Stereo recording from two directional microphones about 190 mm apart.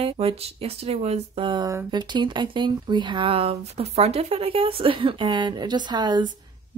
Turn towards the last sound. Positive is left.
turn(degrees=-20)  # may be behind; listen again after turning